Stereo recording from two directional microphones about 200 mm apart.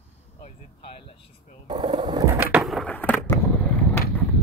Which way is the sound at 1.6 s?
20° right (ahead or behind).